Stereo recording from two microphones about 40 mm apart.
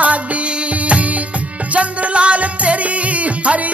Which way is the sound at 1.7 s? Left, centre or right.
Right.